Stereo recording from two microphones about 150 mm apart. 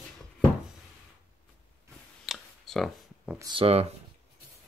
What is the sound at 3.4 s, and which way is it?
Speech, 35° right (ahead or behind).